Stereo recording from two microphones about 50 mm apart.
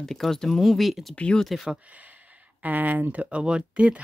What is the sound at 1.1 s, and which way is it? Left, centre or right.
Speech, left.